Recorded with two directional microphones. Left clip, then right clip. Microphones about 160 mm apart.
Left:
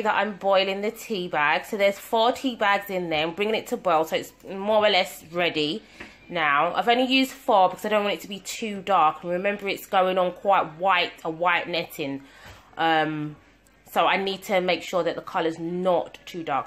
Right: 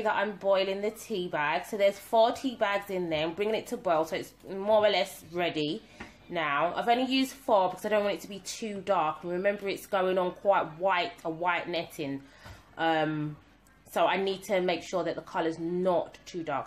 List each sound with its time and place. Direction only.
0.0 s speech: 20° left (ahead or behind)